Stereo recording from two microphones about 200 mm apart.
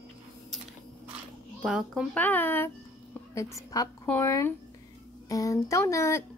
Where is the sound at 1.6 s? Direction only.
Centre (ahead or behind).